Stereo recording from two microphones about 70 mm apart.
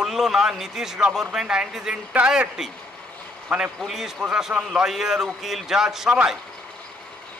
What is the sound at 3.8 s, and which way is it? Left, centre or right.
A man's voice, centre.